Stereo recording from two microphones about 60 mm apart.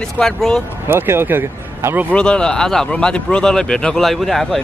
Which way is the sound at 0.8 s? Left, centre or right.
Right.